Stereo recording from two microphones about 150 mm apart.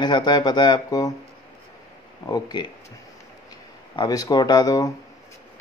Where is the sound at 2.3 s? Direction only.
25° left (ahead or behind).